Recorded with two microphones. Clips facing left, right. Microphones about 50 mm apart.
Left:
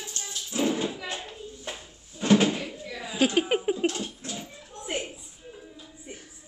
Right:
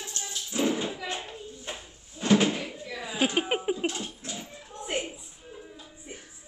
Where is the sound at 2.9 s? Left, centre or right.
Centre.